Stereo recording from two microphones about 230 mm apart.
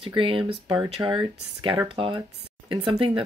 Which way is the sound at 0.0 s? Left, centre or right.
Right.